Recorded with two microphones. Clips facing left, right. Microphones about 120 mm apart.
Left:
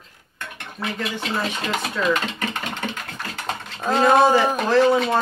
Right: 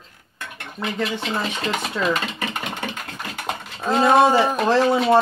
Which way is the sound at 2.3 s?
10° right (ahead or behind).